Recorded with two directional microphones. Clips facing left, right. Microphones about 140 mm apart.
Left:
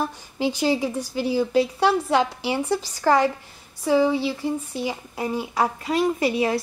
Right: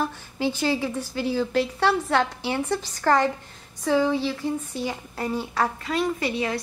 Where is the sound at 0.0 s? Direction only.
15° left (ahead or behind).